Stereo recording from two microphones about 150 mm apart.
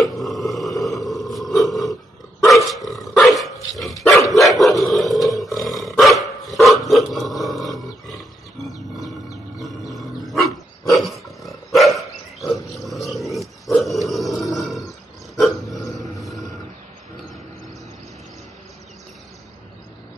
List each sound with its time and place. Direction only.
0.0 s a sound: centre (ahead or behind)
1.0 s grunt: centre (ahead or behind)
2.7 s dog: centre (ahead or behind)
5.6 s roar: centre (ahead or behind)
6.5 s dog: centre (ahead or behind)
9.9 s dog: centre (ahead or behind)
15.8 s a sound: 20° left (ahead or behind)